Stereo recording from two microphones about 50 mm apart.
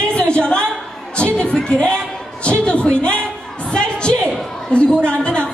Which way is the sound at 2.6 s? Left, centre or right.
Left.